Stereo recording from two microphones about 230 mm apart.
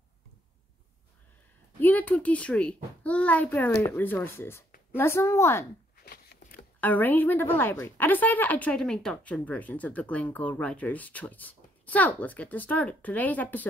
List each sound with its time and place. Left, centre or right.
1.8 s a child's voice: centre
6.0 s a sound: left
6.8 s a woman's voice: centre